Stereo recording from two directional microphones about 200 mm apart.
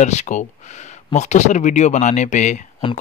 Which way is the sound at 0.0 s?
35° left (ahead or behind).